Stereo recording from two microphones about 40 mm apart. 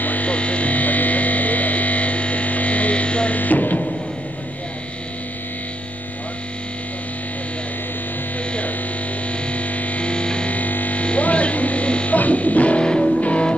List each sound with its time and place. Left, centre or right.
0.0 s music: left
0.3 s music: left
3.3 s music: left
8.5 s hum: left
9.3 s music: left
10.5 s music: left
11.1 s electric shaver: left
12.2 s music: left
12.8 s music: left